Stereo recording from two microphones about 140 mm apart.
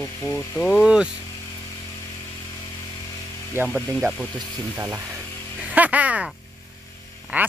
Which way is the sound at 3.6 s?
15° right (ahead or behind).